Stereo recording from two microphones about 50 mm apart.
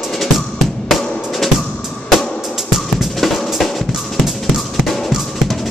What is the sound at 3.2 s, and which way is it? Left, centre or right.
Drum, centre.